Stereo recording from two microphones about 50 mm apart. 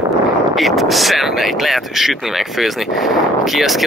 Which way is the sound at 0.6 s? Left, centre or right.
Centre.